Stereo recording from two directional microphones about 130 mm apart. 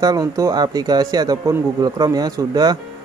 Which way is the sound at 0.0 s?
30° right (ahead or behind).